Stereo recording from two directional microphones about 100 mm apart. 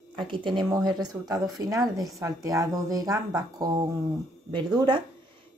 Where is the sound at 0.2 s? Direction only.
55° right (ahead or behind).